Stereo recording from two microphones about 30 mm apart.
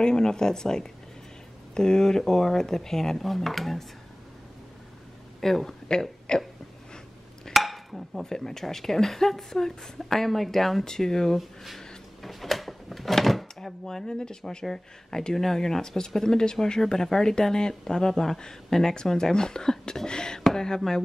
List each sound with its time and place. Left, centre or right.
0.0 s speech: left; by 3.8 s centre
5.4 s speech: centre
5.9 s speech: left
7.5 s a sound: centre
8.2 s speech: centre
10.9 s speech: centre
11.3 s speech: centre
12.2 s drawer open or close: centre
13.6 s speech: centre
14.0 s speech: left
14.7 s speech: centre